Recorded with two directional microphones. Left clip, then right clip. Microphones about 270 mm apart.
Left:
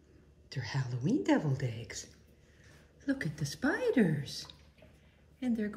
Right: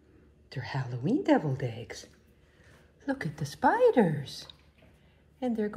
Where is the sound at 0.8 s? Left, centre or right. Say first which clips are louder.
Right 3 dB; centre.